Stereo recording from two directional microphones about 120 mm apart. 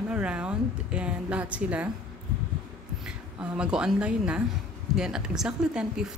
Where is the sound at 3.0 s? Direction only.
10° right (ahead or behind).